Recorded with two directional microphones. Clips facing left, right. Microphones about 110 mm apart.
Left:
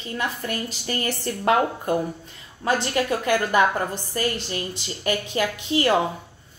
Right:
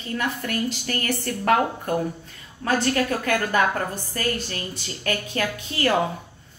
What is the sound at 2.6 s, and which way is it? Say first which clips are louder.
A woman's voice: even; 20° left (ahead or behind).